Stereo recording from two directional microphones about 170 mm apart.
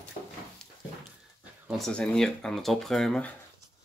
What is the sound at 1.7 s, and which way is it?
Speech, 5° left (ahead or behind).